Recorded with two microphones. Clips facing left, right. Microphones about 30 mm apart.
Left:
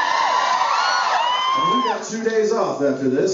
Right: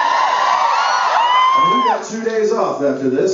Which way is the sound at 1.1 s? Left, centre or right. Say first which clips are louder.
Right 6 dB; centre.